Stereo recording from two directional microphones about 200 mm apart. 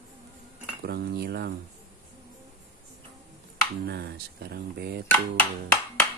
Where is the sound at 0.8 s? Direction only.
55° right (ahead or behind).